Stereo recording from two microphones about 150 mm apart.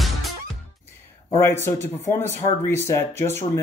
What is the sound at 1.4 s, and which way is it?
Speech, 15° left (ahead or behind).